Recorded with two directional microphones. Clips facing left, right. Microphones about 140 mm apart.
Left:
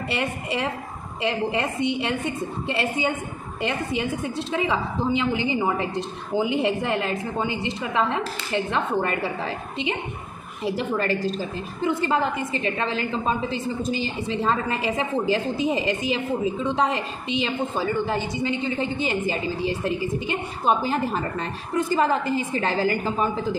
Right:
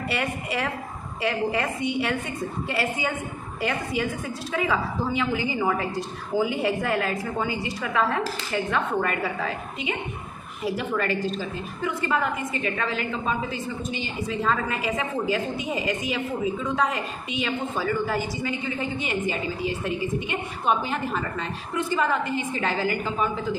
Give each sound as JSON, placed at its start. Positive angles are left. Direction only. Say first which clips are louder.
{"t": 0.1, "sound": "a woman's voice", "louder": "left 2 dB", "side_deg": 25}
{"t": 11.0, "sound": "a woman's voice", "louder": "left 2 dB", "side_deg": 35}